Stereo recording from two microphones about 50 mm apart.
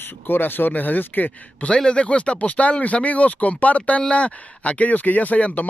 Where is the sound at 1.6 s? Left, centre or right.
Left.